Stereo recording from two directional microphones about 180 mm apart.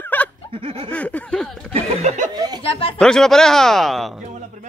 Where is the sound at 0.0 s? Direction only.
10° left (ahead or behind).